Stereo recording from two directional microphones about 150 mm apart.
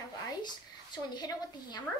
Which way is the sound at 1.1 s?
30° left (ahead or behind).